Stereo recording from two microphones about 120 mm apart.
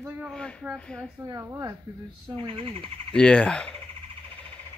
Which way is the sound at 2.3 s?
55° right (ahead or behind).